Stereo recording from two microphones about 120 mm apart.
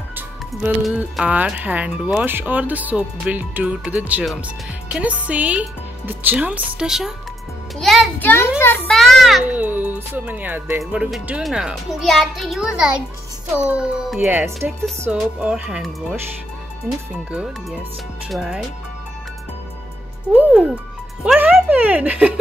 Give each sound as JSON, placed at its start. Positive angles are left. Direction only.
{"t": 0.1, "sound": "music", "side_deg": -10}
{"t": 1.2, "sound": "a child's voice", "side_deg": -15}
{"t": 8.2, "sound": "a child's voice", "side_deg": 15}
{"t": 8.9, "sound": "a child's voice", "side_deg": 0}
{"t": 9.5, "sound": "a child's voice", "side_deg": -15}
{"t": 14.2, "sound": "speech", "side_deg": -20}
{"t": 15.0, "sound": "speech", "side_deg": -10}
{"t": 17.3, "sound": "a child's voice", "side_deg": -10}
{"t": 20.3, "sound": "speech", "side_deg": -5}